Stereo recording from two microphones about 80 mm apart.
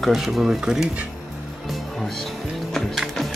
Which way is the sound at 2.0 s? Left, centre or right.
Centre.